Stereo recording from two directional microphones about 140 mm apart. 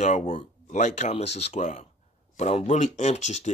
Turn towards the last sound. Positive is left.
turn(degrees=55)  # may be behind; listen again after turning